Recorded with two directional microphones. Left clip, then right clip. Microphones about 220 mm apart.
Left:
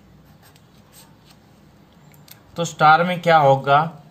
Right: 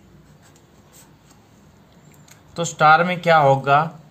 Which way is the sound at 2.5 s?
5° right (ahead or behind).